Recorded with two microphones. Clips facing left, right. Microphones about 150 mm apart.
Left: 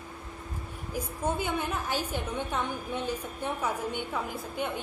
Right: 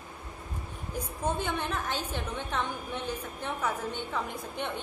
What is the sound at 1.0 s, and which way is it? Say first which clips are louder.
A woman's voice: left 1 dB; 10° left (ahead or behind).